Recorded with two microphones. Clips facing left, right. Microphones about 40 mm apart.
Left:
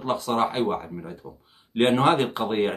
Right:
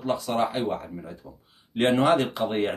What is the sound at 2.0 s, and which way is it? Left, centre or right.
Speech, left.